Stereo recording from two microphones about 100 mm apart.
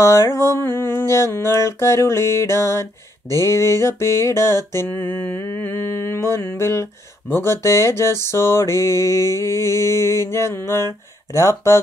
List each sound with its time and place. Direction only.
0.0 s music: 30° left (ahead or behind)